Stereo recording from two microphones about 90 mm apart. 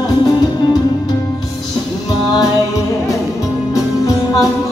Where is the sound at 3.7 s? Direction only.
35° left (ahead or behind).